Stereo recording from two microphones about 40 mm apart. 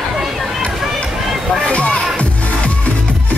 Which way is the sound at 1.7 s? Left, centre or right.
Left.